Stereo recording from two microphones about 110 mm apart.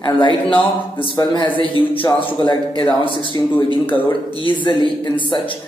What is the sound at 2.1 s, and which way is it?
Speech, 50° left (ahead or behind).